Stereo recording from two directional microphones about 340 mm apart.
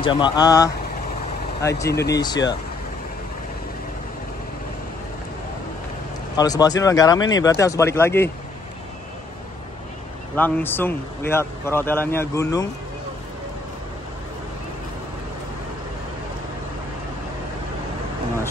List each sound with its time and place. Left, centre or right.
0.0 s speech: centre
1.9 s speech: left
2.1 s speech: centre
6.3 s speech: centre
10.3 s speech: centre